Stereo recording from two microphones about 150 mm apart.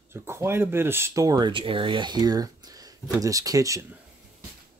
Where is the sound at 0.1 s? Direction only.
15° right (ahead or behind).